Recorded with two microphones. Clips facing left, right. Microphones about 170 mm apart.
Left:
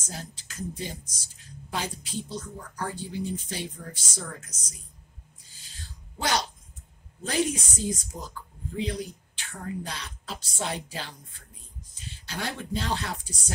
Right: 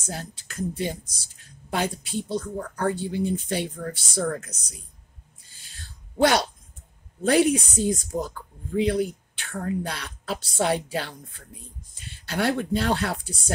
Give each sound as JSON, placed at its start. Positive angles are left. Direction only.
{"t": 0.0, "sound": "speech", "side_deg": -60}
{"t": 5.6, "sound": "a sound", "side_deg": -60}
{"t": 7.2, "sound": "speech", "side_deg": -60}